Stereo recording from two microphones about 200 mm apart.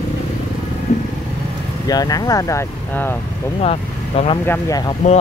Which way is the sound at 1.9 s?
20° left (ahead or behind).